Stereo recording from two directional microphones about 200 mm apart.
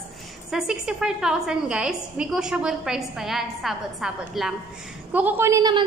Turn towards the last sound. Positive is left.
turn(degrees=-20)  # may be behind; listen again after turning